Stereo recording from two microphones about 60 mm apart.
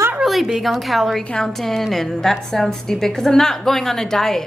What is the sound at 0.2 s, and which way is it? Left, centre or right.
A woman's voice, centre.